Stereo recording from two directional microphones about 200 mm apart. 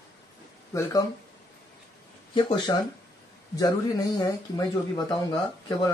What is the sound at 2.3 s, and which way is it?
Speech, 20° left (ahead or behind).